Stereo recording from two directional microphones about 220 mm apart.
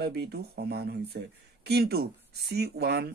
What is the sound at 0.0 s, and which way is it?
Speech, 45° right (ahead or behind).